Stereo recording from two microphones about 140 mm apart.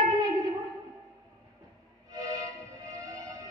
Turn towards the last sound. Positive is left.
turn(degrees=-25)  # may be behind; listen again after turning